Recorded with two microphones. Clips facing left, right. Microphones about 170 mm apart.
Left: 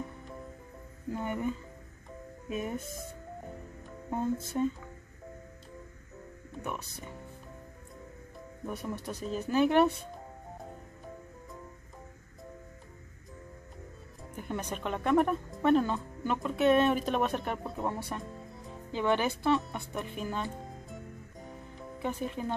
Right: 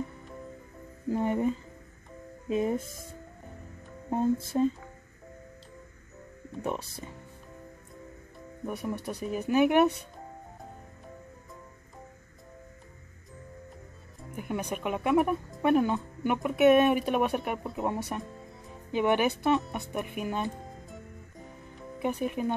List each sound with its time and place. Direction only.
1.1 s speech: 30° right (ahead or behind)
4.5 s speech: 30° right (ahead or behind)
6.6 s speech: 30° right (ahead or behind)
8.6 s speech: 10° right (ahead or behind)
14.3 s speech: 10° right (ahead or behind)
17.8 s speech: 20° right (ahead or behind)
22.0 s speech: 15° right (ahead or behind)